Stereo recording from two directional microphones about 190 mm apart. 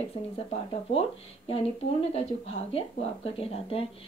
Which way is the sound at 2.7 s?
30° left (ahead or behind).